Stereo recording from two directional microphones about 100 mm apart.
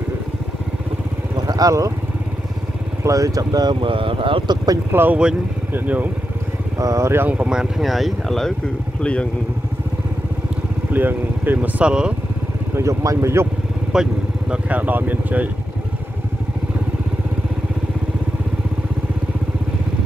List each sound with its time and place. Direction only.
1.5 s speech: 35° right (ahead or behind)
3.0 s speech: 35° right (ahead or behind)
3.8 s speech: 60° right (ahead or behind)
4.9 s speech: 15° right (ahead or behind)
6.8 s speech: 30° right (ahead or behind); by 9.3 s 10° left (ahead or behind)
10.9 s speech: 20° right (ahead or behind)
12.7 s speech: 30° right (ahead or behind)
13.9 s speech: 5° right (ahead or behind)